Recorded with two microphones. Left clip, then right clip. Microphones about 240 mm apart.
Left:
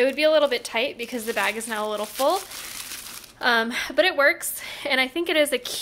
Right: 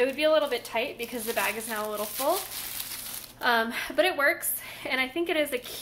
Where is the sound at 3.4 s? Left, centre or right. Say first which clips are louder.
Left 4 dB; left.